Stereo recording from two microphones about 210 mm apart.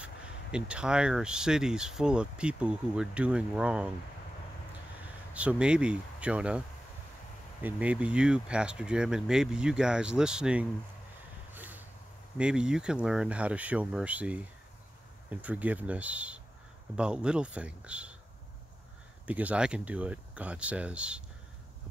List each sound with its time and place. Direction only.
0.0 s speech: 5° right (ahead or behind)
5.3 s speech: 5° right (ahead or behind)
7.6 s speech: 5° right (ahead or behind)
11.5 s a sound: 10° right (ahead or behind)
12.4 s speech: 5° right (ahead or behind)
15.4 s speech: 5° right (ahead or behind)
19.2 s speech: 5° right (ahead or behind)